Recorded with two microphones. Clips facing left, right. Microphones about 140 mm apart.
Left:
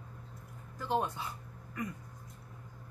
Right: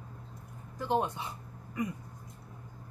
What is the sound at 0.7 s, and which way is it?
Speech, 20° right (ahead or behind).